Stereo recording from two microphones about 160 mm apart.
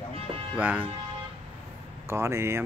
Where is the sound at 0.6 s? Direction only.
10° right (ahead or behind).